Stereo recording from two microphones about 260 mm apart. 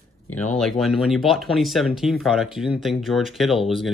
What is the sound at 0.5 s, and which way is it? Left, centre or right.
Speech, centre.